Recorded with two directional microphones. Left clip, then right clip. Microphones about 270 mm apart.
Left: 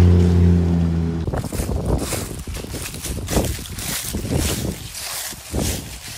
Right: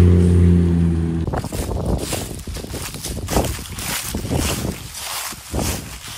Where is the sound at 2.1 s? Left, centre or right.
Centre.